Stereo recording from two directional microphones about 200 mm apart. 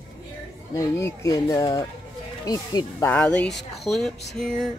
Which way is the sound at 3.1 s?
5° left (ahead or behind).